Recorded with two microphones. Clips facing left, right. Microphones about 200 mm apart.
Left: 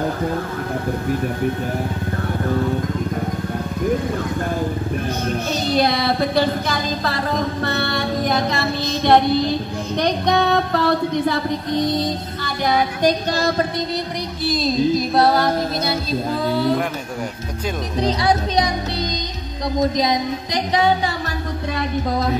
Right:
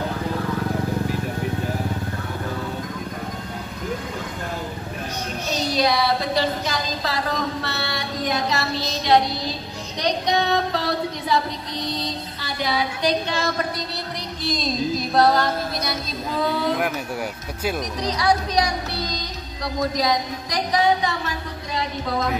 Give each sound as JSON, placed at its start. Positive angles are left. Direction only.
{"t": 5.5, "sound": "child singing", "side_deg": 55}
{"t": 14.4, "sound": "child singing", "side_deg": 5}
{"t": 15.8, "sound": "speech", "side_deg": 30}
{"t": 18.0, "sound": "speech", "side_deg": 25}
{"t": 19.8, "sound": "speech", "side_deg": 20}